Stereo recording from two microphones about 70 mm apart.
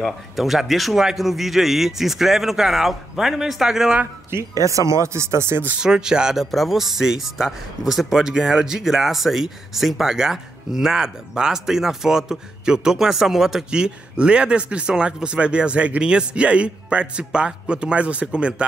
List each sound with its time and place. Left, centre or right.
0.0 s speech: centre
4.4 s speech: right
5.8 s speech: centre